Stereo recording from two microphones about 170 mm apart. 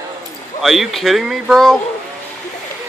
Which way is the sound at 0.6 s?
Centre (ahead or behind).